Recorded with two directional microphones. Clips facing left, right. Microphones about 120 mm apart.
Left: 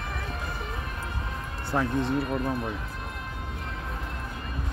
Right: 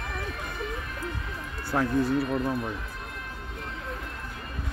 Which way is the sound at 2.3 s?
5° left (ahead or behind).